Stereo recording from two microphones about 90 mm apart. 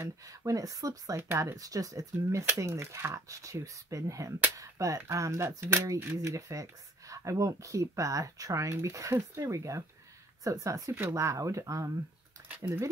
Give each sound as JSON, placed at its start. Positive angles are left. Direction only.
{"t": 0.3, "sound": "speech", "side_deg": -40}